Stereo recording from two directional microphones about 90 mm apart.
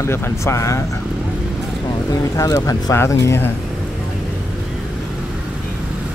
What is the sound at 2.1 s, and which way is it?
Speech, 35° left (ahead or behind).